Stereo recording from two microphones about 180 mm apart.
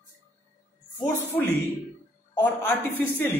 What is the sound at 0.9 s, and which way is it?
Speech, 15° left (ahead or behind).